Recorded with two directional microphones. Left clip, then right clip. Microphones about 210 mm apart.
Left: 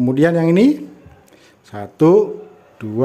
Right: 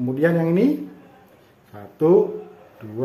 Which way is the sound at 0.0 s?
45° left (ahead or behind).